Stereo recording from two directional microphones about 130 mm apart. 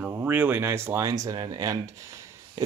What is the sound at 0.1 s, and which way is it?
Speech, 15° right (ahead or behind).